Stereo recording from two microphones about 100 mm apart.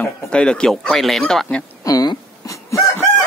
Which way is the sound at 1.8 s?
35° left (ahead or behind).